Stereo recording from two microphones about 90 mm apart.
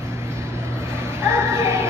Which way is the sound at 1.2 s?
30° right (ahead or behind).